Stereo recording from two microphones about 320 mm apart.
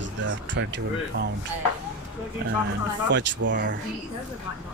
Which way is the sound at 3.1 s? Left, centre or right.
Right.